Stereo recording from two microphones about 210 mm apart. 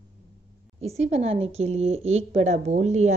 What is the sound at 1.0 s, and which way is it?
A woman's voice, 30° right (ahead or behind).